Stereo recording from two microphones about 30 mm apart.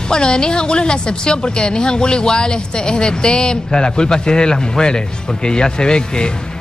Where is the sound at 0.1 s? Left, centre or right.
Left.